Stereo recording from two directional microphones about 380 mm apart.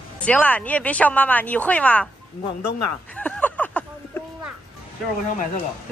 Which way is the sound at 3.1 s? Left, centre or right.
Centre.